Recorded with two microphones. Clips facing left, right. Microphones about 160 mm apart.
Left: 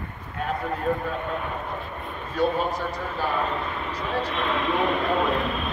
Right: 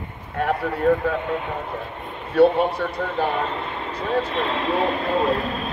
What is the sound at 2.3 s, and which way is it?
Speech, 65° right (ahead or behind).